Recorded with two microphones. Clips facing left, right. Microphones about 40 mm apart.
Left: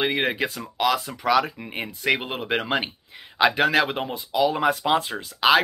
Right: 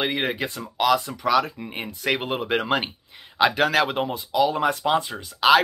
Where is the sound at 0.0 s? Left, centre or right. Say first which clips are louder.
Left 2 dB; centre.